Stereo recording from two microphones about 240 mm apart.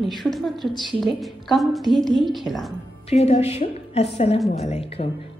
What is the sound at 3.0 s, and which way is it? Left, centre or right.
A woman's voice, left.